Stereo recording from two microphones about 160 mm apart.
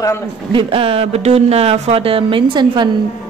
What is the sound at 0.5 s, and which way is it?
A woman's voice, 35° right (ahead or behind).